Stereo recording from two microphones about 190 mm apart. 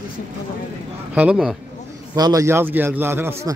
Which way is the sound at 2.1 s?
20° right (ahead or behind).